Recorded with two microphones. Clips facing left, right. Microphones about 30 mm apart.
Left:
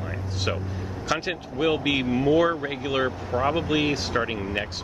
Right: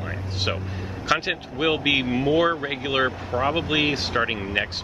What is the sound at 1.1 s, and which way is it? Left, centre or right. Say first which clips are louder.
Speech: right 4 dB; right.